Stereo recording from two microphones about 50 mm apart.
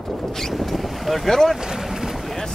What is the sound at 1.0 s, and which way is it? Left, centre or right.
Boat, centre.